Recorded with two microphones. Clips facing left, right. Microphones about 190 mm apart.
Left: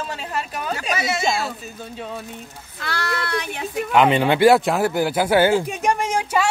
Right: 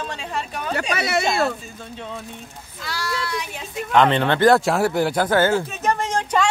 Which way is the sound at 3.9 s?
5° left (ahead or behind).